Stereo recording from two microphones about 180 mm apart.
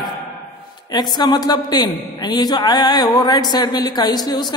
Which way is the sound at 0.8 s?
25° left (ahead or behind).